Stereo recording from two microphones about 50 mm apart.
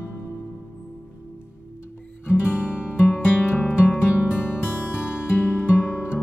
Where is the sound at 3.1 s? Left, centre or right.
Left.